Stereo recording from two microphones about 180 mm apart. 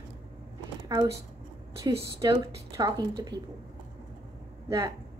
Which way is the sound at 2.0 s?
20° right (ahead or behind).